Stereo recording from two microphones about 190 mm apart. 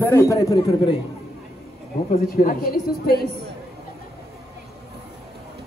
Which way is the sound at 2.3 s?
50° left (ahead or behind).